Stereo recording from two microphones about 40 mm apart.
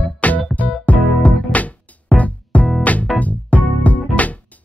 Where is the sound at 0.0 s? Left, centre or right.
Left.